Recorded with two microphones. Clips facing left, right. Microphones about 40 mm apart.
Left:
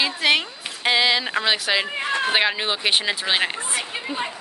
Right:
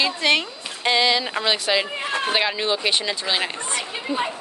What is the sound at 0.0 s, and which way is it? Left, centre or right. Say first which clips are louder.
Speech: even; centre.